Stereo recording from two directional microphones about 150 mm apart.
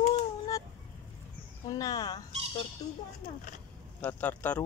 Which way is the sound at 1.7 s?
25° left (ahead or behind).